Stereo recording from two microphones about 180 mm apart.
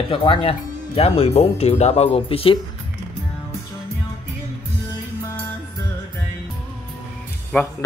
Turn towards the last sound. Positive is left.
turn(degrees=10)  # may be behind; listen again after turning